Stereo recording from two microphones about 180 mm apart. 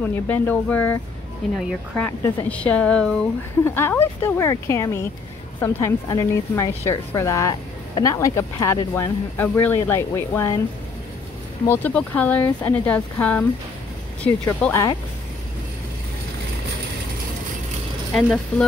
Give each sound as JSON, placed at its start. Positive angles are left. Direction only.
{"t": 0.0, "sound": "a woman's voice", "side_deg": 10}
{"t": 1.6, "sound": "speech", "side_deg": -5}
{"t": 2.0, "sound": "a woman's voice", "side_deg": 10}
{"t": 11.6, "sound": "a woman's voice", "side_deg": 10}
{"t": 18.1, "sound": "speech", "side_deg": 0}